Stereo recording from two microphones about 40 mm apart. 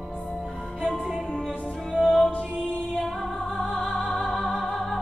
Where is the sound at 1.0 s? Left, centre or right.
Centre.